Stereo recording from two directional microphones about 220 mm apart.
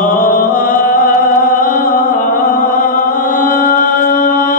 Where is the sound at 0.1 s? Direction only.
40° left (ahead or behind).